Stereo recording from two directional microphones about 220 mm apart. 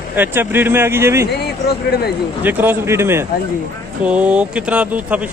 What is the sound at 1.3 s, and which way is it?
Speech, 45° left (ahead or behind).